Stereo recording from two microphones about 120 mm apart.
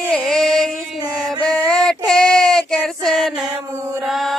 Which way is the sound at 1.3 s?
45° left (ahead or behind).